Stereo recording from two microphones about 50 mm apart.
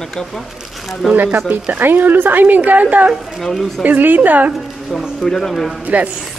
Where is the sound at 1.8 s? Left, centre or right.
Right.